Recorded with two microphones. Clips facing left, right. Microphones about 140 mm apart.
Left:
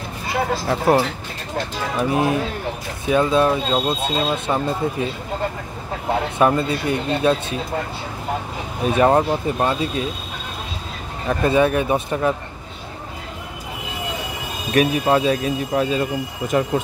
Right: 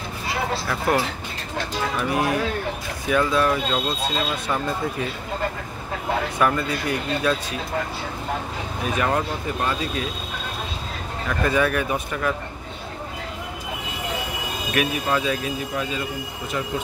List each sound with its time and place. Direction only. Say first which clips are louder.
0.7 s speech: left 6 dB; 35° left (ahead or behind)
2.0 s speech: left 4 dB; 25° left (ahead or behind)
6.3 s speech: left 6 dB; 25° left (ahead or behind)
8.9 s speech: left 8 dB; 30° left (ahead or behind)
11.2 s speech: left 5 dB; 25° left (ahead or behind)
14.7 s speech: left 7 dB; 35° left (ahead or behind)